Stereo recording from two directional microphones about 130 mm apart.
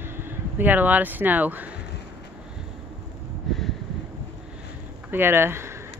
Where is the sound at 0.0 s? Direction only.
15° right (ahead or behind).